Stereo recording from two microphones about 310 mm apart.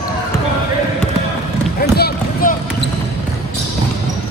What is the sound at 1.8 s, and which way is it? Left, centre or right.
Run, left.